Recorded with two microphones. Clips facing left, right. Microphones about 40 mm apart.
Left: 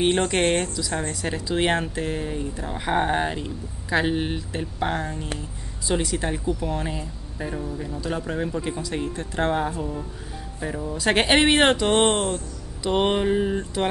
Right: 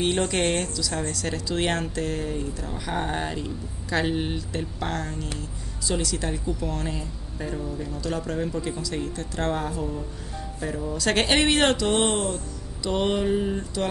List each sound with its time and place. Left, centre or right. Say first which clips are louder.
0.0 s speech: left 3 dB; centre